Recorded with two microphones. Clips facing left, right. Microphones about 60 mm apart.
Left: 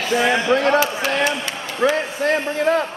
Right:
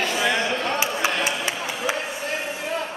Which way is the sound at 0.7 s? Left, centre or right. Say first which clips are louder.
Left 5 dB; centre.